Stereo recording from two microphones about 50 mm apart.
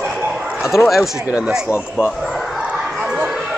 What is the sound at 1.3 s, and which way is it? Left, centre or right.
Speech, centre.